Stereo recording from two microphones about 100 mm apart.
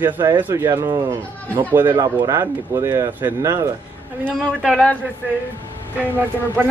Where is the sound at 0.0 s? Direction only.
20° right (ahead or behind).